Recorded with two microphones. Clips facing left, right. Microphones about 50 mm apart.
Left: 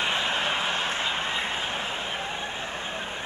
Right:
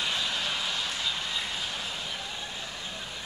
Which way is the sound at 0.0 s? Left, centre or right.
Left.